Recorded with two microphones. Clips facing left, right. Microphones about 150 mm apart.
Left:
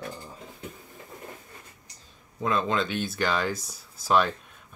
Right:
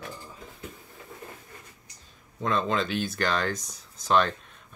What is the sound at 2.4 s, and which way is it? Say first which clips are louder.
Speech: even; centre (ahead or behind).